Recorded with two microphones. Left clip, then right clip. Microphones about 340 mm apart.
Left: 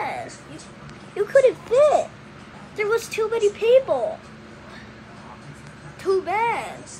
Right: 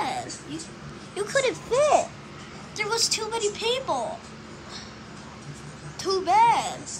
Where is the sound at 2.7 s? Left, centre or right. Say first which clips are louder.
Left 2 dB; centre.